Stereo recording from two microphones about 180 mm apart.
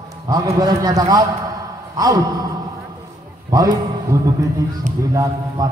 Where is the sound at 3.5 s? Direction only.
20° right (ahead or behind).